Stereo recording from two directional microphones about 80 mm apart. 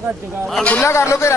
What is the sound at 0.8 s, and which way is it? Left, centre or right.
Speech, left.